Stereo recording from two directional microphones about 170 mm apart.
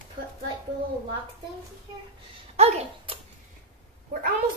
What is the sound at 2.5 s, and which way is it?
Speech, 35° right (ahead or behind).